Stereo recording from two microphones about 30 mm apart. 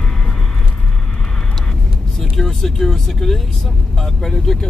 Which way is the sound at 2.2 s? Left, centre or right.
Centre.